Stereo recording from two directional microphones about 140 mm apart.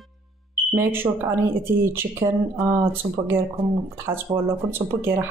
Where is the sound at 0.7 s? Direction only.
15° right (ahead or behind).